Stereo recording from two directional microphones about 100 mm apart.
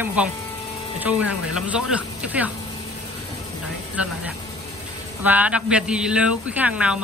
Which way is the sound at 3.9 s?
15° right (ahead or behind).